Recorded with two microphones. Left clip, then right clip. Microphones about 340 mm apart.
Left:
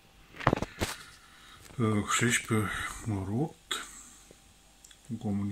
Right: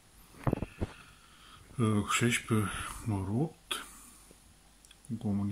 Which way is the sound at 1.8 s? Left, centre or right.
Centre.